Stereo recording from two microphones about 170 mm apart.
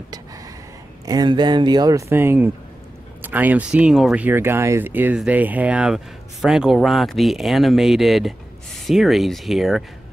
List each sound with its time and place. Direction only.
1.0 s speech: 25° right (ahead or behind); by 9.8 s centre (ahead or behind)